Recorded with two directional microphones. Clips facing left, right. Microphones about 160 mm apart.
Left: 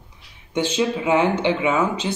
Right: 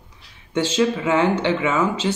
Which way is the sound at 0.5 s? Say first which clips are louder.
Right 2 dB; 15° left (ahead or behind).